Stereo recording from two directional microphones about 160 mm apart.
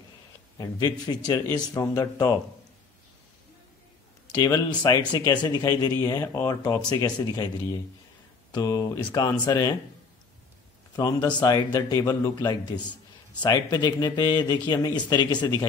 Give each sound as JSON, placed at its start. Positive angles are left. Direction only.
{"t": 0.6, "sound": "speech", "side_deg": 25}
{"t": 4.3, "sound": "speech", "side_deg": 25}
{"t": 11.0, "sound": "speech", "side_deg": 25}